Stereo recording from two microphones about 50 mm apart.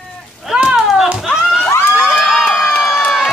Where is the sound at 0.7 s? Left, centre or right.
Centre.